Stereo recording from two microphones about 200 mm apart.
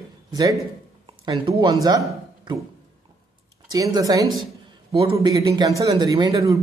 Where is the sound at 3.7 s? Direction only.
20° right (ahead or behind).